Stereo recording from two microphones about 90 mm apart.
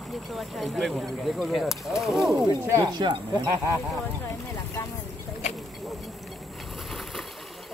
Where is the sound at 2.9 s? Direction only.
55° right (ahead or behind).